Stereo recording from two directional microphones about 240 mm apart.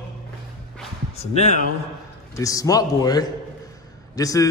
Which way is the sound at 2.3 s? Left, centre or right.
Centre.